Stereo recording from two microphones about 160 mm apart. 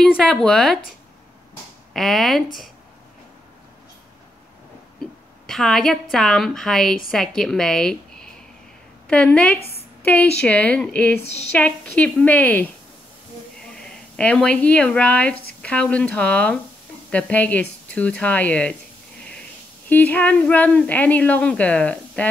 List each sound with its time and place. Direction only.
0.0 s a woman's voice: centre (ahead or behind)
2.0 s a woman's voice: centre (ahead or behind)
5.5 s a woman's voice: centre (ahead or behind)
9.6 s a sound: 40° left (ahead or behind)
10.0 s speech: 10° left (ahead or behind)
13.7 s speech: 5° left (ahead or behind)
19.9 s speech: 10° left (ahead or behind)